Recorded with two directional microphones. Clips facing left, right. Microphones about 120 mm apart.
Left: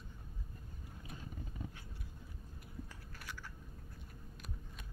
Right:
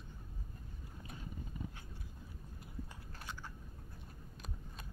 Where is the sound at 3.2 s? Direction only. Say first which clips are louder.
Right 2 dB; 25° right (ahead or behind).